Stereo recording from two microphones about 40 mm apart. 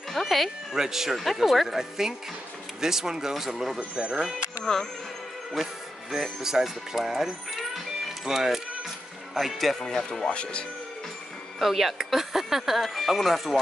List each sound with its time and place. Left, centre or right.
0.1 s music: centre
0.7 s speech: centre
3.9 s speech: right
6.4 s speech: centre
9.8 s speech: centre
11.6 s speech: centre